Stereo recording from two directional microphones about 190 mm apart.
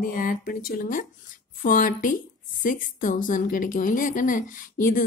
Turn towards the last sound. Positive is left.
turn(degrees=45)  # may be behind; listen again after turning